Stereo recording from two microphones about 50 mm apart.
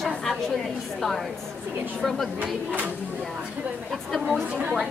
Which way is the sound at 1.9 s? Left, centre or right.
Centre.